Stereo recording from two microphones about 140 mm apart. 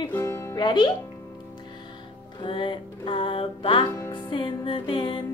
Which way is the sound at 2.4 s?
35° left (ahead or behind).